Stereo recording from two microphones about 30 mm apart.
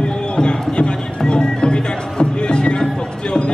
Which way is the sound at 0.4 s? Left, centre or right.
Left.